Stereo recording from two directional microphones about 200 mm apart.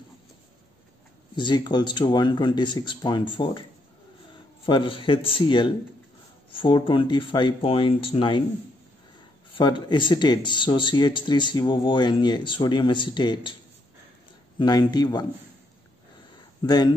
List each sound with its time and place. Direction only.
1.3 s speech: 20° left (ahead or behind)
4.6 s speech: 25° left (ahead or behind)
9.5 s speech: 20° left (ahead or behind)
14.6 s speech: 20° left (ahead or behind)
16.6 s speech: 20° left (ahead or behind)